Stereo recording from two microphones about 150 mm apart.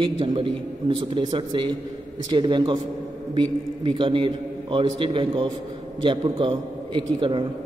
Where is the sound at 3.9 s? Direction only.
35° right (ahead or behind).